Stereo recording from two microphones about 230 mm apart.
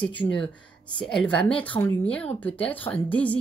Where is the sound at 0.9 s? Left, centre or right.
Centre.